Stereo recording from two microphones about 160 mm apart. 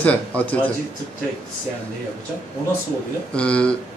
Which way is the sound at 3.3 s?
5° left (ahead or behind).